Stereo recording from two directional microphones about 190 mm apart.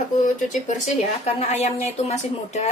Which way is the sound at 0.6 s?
40° left (ahead or behind).